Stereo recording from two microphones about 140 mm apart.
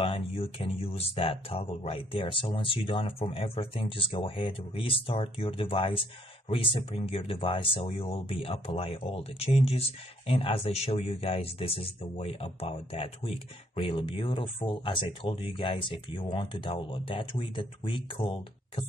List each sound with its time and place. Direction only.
0.0 s speech: 40° left (ahead or behind)